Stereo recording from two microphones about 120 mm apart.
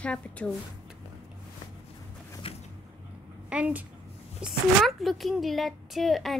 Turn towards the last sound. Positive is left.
turn(degrees=0)  # may be behind; listen again after turning